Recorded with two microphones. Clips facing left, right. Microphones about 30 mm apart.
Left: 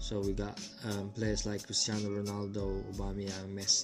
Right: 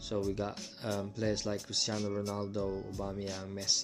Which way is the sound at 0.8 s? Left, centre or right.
Centre.